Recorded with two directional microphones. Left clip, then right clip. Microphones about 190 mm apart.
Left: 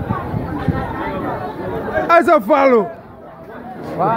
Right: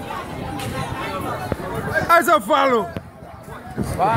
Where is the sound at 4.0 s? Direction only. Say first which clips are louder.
Left 2 dB; 25° right (ahead or behind).